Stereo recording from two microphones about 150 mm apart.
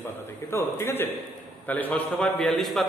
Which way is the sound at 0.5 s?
15° left (ahead or behind).